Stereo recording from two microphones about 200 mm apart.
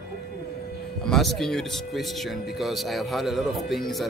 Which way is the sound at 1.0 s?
Centre (ahead or behind).